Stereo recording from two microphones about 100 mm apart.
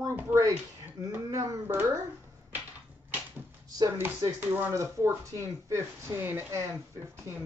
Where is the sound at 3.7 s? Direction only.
40° right (ahead or behind).